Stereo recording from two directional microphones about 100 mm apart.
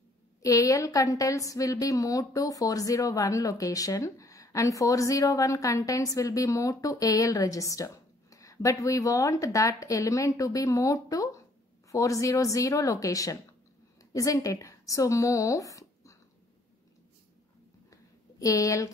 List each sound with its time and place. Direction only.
0.4 s a woman's voice: 35° left (ahead or behind)
18.4 s a woman's voice: 35° left (ahead or behind)